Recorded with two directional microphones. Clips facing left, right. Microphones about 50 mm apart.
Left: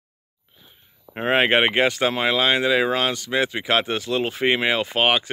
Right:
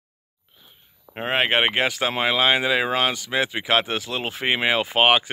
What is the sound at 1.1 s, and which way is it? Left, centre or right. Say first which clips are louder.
Speech: left 3 dB; centre.